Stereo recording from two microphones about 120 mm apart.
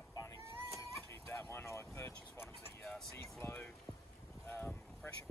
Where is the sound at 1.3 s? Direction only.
20° left (ahead or behind).